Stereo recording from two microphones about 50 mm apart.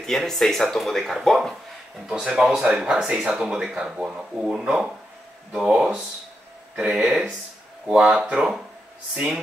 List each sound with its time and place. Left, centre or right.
0.0 s speech: centre
2.0 s speech: centre
8.1 s speech: right
9.1 s speech: centre